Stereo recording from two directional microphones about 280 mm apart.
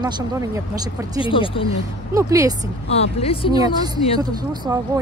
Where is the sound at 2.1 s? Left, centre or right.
Centre.